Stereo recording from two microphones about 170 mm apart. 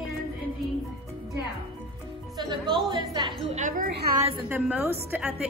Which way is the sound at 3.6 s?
50° right (ahead or behind).